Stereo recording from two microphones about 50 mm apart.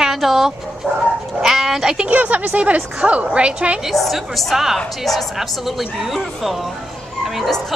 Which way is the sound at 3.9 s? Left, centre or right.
Centre.